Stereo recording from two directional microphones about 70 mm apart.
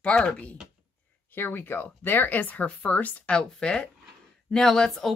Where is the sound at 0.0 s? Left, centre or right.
Centre.